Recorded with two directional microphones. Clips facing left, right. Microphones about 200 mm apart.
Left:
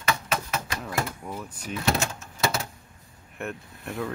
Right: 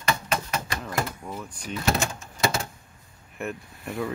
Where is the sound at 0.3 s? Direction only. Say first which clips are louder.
Right 1 dB; 5° left (ahead or behind).